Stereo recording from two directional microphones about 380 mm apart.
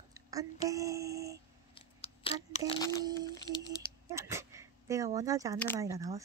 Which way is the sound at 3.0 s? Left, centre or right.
Centre.